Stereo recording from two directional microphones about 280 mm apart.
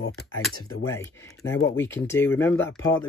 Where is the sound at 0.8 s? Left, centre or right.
Centre.